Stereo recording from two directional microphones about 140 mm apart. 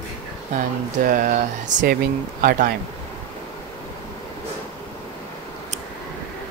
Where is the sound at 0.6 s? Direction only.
75° right (ahead or behind).